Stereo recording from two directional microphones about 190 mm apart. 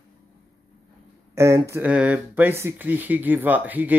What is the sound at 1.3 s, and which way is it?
Speech, 15° right (ahead or behind).